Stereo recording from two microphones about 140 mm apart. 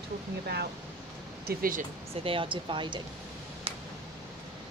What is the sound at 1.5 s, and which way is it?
Speech, 85° right.